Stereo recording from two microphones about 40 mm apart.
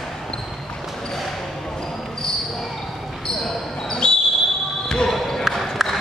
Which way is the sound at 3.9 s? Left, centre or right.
Centre.